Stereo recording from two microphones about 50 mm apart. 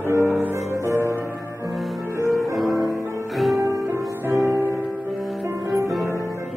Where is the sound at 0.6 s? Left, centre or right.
Right.